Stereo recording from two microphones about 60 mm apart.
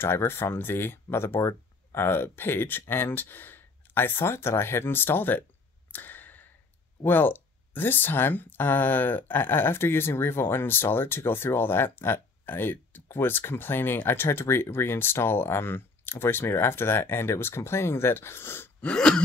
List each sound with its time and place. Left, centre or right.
0.0 s speech: left
5.9 s a sound: left
7.1 s speech: left
18.8 s gasp: centre